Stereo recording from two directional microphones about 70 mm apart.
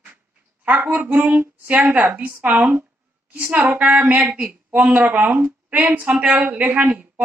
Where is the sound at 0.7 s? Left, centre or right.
Right.